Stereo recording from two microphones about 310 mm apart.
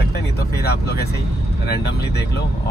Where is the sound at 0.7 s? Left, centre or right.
Left.